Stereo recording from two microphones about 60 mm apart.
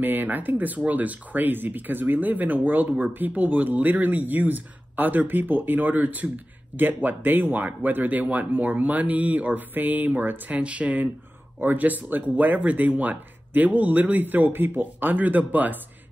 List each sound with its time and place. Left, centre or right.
0.0 s speech: right
10.6 s speech: right